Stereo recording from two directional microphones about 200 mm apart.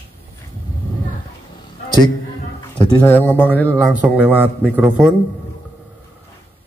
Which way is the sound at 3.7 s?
10° right (ahead or behind).